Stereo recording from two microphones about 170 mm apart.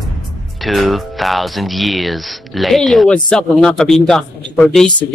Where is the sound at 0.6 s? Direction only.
Centre (ahead or behind).